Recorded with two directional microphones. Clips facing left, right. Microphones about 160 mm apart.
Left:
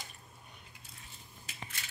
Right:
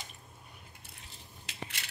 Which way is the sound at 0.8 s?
80° right.